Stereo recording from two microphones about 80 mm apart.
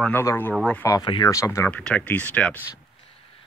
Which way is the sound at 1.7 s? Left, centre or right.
Centre.